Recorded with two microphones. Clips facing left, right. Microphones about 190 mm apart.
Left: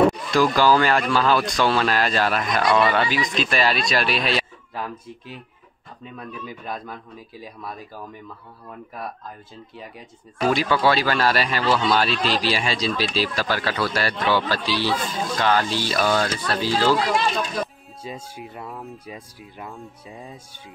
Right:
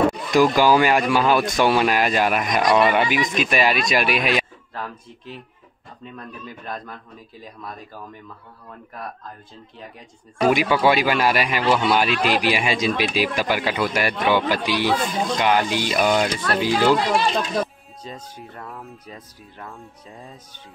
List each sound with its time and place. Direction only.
0.3 s speech: 15° right (ahead or behind)
4.7 s a man's voice: 10° left (ahead or behind)
10.4 s speech: 15° right (ahead or behind)
18.0 s a man's voice: 10° left (ahead or behind)
18.7 s speech: centre (ahead or behind)
19.0 s a man's voice: 10° left (ahead or behind)